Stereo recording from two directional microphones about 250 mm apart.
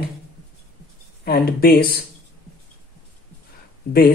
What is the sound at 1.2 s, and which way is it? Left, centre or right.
Speech, left.